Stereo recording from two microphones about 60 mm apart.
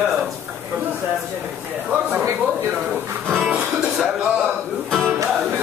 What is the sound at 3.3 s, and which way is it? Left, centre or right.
Music, centre.